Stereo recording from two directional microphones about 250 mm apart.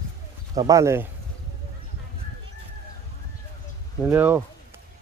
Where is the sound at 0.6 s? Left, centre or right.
Centre.